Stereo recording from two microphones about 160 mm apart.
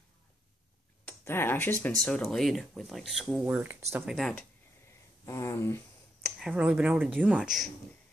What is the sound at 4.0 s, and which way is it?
Speech, centre (ahead or behind).